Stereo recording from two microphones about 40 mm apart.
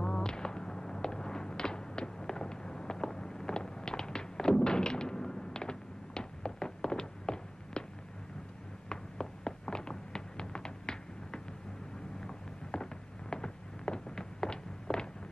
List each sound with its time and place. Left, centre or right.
0.0 s fireworks: centre
8.8 s a sound: centre
13.3 s fireworks: centre